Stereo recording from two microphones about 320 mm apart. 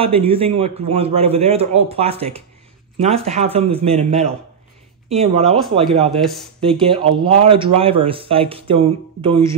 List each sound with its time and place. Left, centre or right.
0.0 s a man's voice: centre
6.0 s speech: centre
7.0 s speech: centre